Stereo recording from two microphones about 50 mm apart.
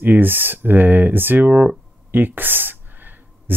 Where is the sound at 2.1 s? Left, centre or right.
Right.